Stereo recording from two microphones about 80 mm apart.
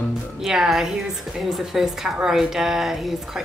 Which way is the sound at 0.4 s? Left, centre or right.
Centre.